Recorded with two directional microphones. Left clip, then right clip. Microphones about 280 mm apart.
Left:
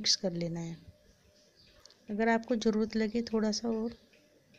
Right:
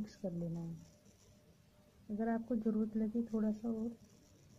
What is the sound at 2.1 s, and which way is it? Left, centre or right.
Speech, left.